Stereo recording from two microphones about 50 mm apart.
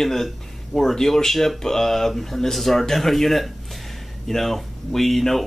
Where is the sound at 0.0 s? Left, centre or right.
Centre.